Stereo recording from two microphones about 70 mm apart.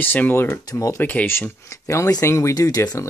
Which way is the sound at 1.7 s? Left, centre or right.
Left.